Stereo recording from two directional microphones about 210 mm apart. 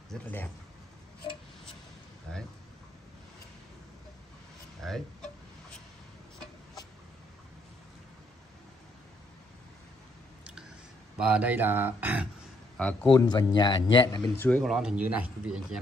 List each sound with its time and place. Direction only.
0.1 s speech: 10° left (ahead or behind)
4.8 s speech: centre (ahead or behind)
11.1 s speech: 5° right (ahead or behind)
12.7 s a man's voice: 5° left (ahead or behind)
13.1 s speech: 20° left (ahead or behind)
14.4 s speech: 5° left (ahead or behind)